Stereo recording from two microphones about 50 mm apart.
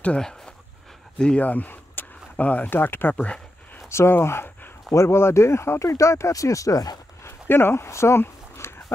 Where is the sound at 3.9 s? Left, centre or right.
Left.